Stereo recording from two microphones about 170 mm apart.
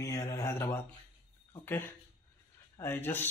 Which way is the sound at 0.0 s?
20° left (ahead or behind).